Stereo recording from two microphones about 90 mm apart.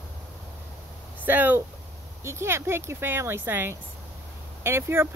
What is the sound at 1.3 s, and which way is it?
Speech, 20° right (ahead or behind).